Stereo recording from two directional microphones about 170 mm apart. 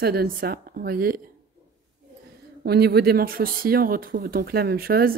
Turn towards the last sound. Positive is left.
turn(degrees=-60)  # may be behind; listen again after turning